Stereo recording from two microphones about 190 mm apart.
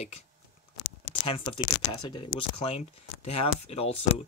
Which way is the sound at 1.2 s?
30° left (ahead or behind).